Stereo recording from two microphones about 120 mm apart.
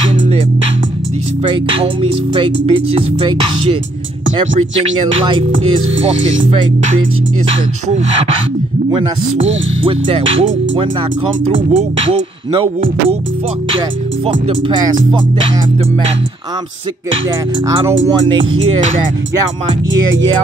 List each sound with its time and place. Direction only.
1.4 s speech: 45° right (ahead or behind)
5.2 s speech: 45° right (ahead or behind)
8.9 s speech: 45° right (ahead or behind)
17.6 s speech: 30° right (ahead or behind)